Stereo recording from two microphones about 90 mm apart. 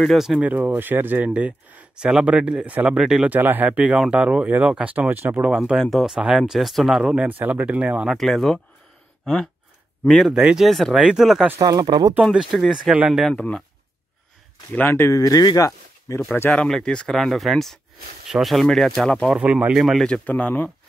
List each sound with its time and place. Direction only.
0.0 s speech: centre (ahead or behind)
0.4 s speech: 20° right (ahead or behind)
3.3 s speech: 20° right (ahead or behind)
5.8 s speech: centre (ahead or behind)
7.0 s speech: 10° right (ahead or behind)
8.1 s speech: centre (ahead or behind)
11.6 s speech: 55° right (ahead or behind)
12.3 s speech: centre (ahead or behind)
12.9 s speech: 15° right (ahead or behind)
13.3 s speech: 15° left (ahead or behind)
14.7 s speech: 25° left (ahead or behind); by 16.2 s 40° left (ahead or behind)
16.4 s speech: 5° left (ahead or behind)
19.3 s speech: 10° right (ahead or behind)
20.2 s speech: 15° left (ahead or behind)